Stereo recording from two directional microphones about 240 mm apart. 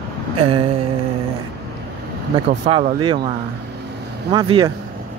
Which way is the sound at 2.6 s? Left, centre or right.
Right.